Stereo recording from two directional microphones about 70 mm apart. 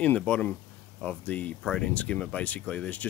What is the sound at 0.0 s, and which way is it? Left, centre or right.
Speech, centre.